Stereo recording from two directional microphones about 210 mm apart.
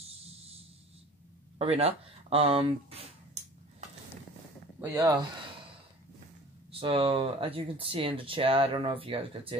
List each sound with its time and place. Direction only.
1.6 s speech: 30° right (ahead or behind)
4.7 s speech: 15° right (ahead or behind)
6.7 s speech: 25° right (ahead or behind)